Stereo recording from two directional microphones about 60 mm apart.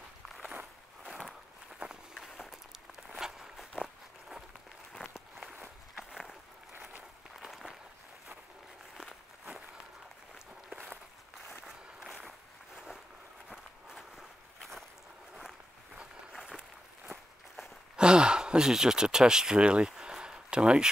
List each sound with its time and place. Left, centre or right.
1.0 s walk: centre
5.5 s walk: right
6.7 s a sound: right
7.3 s a sound: centre
8.9 s walk: centre
11.6 s a sound: centre
13.5 s walk: centre
15.3 s walk: centre
17.9 s sigh: centre